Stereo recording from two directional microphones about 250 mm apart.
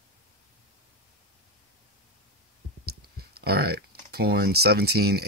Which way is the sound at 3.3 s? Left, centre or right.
Right.